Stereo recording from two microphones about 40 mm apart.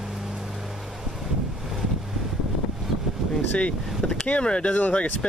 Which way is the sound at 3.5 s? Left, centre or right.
Left.